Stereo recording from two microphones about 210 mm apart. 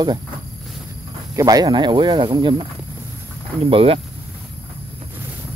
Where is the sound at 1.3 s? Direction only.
15° right (ahead or behind).